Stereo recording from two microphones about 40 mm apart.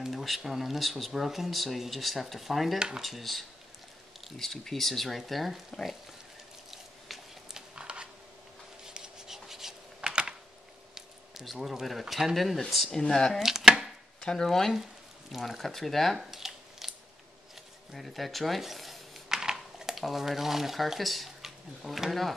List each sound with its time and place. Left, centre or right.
0.1 s a sound: centre
0.4 s speech: centre
6.7 s biting: centre
7.7 s a sound: right
8.8 s writing: centre
11.4 s speech: centre
12.9 s speech: centre
13.4 s chopping: centre
14.2 s speech: centre
15.3 s speech: centre
16.2 s a sound: centre
17.9 s speech: centre